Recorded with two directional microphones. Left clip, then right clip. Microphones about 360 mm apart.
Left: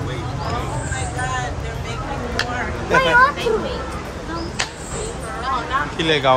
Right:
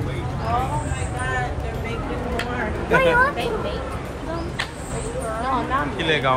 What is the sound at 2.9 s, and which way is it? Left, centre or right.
Speech, centre.